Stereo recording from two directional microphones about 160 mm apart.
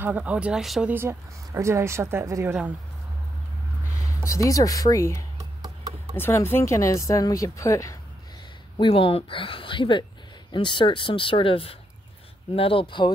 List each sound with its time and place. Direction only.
0.0 s a woman's voice: 10° right (ahead or behind)
0.9 s a woman's voice: 15° right (ahead or behind)
4.0 s speech: 20° left (ahead or behind)
8.7 s speech: 35° left (ahead or behind)